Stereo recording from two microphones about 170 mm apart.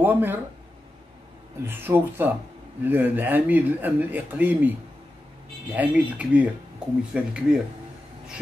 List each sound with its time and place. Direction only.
0.0 s speech: 10° right (ahead or behind)
1.7 s speech: 10° right (ahead or behind)